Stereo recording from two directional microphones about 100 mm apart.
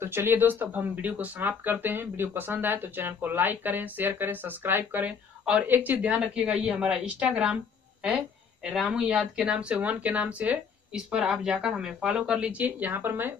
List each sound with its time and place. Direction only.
0.0 s speech: 25° right (ahead or behind)
8.7 s speech: 5° right (ahead or behind)